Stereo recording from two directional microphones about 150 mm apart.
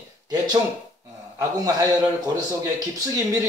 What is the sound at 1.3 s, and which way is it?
Speech, 25° right (ahead or behind).